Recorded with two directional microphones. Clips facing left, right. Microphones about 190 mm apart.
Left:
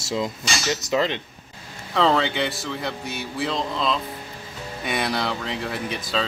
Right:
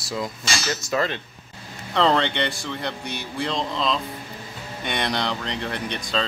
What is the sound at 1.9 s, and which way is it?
Speech, centre (ahead or behind).